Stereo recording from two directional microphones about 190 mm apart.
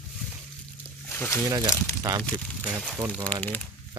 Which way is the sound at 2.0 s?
20° right (ahead or behind).